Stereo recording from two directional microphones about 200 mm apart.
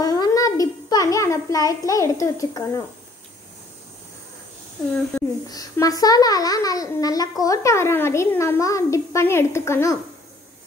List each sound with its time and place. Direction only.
0.0 s child singing: 20° left (ahead or behind)
5.1 s a child's voice: 5° left (ahead or behind)
5.5 s a child's voice: 20° left (ahead or behind)